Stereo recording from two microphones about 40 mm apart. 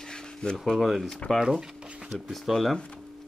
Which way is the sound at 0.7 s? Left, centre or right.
Centre.